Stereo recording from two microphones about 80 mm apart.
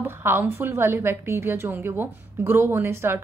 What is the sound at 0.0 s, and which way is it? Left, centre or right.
A woman's voice, right.